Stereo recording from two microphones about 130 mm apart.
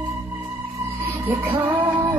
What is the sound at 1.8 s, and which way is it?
Music, 40° right (ahead or behind).